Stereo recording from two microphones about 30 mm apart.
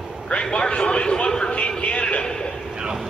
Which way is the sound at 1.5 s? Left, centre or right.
Left.